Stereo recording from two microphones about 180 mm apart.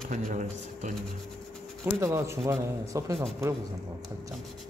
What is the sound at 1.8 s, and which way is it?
A man's voice, 15° right (ahead or behind).